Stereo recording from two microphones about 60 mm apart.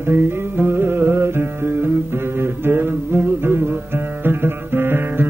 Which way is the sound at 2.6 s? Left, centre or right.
Right.